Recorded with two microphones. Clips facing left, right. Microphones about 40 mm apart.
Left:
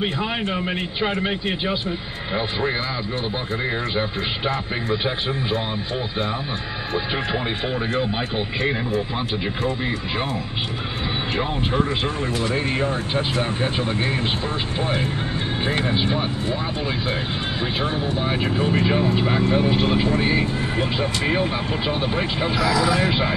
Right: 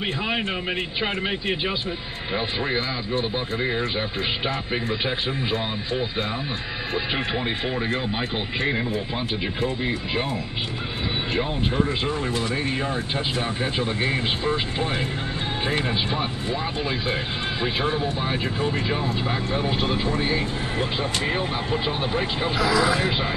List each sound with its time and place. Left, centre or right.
1.0 s speech: centre
13.1 s speech: centre
15.8 s speech: centre
18.4 s speech: left
19.5 s speech: centre
22.7 s speech: right